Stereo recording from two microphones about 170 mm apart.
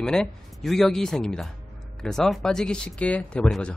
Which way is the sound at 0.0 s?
5° left (ahead or behind).